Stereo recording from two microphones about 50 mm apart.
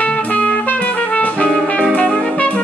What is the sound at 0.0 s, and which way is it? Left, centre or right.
Music, left.